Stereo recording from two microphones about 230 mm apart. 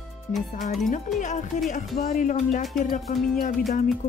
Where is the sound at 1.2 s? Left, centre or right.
Left.